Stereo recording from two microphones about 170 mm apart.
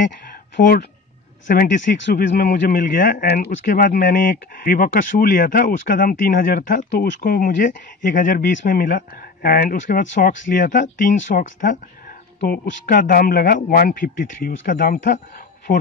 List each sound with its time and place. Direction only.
1.5 s speech: 50° left (ahead or behind)
2.0 s speech: 70° left (ahead or behind)
2.5 s speech: 55° left (ahead or behind)
3.6 s speech: 60° left (ahead or behind)
12.4 s speech: 75° left (ahead or behind); by 15.8 s 50° left (ahead or behind)